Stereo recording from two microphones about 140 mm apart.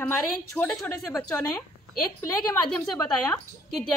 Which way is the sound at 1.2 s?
15° left (ahead or behind).